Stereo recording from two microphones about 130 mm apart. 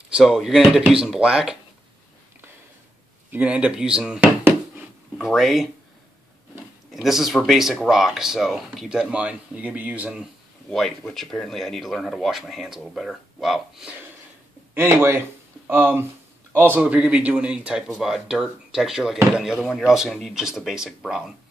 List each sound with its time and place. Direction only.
0.1 s speech: centre (ahead or behind)
3.3 s speech: 10° right (ahead or behind)
6.9 s speech: centre (ahead or behind)
10.7 s speech: centre (ahead or behind)
14.7 s speech: 15° right (ahead or behind)